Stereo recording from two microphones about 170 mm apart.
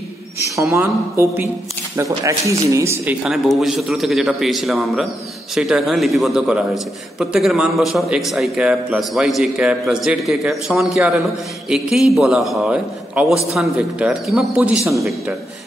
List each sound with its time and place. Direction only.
0.4 s a woman's voice: 15° right (ahead or behind)
3.3 s a man's voice: centre (ahead or behind)